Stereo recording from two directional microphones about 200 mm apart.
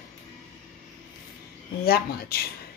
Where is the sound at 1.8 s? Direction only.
50° left (ahead or behind).